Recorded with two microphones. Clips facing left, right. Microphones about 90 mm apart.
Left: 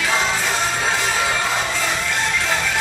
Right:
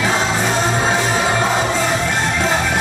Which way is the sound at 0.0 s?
25° right (ahead or behind).